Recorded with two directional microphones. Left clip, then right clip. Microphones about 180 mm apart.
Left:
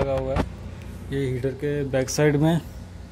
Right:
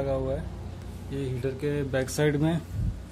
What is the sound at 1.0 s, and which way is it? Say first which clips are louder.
Speech: left 7 dB; 40° left (ahead or behind).